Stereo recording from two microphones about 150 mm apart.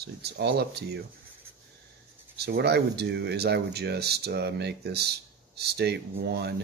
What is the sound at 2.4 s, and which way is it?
Speech, 90° right.